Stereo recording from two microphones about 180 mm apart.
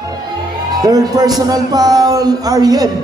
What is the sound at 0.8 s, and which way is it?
Speech, 20° right (ahead or behind).